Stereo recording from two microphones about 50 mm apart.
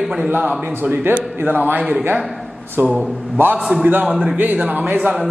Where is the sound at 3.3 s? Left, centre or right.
Right.